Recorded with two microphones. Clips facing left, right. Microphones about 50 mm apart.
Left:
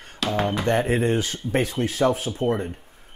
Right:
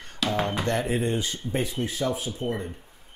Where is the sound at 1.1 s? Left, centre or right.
Left.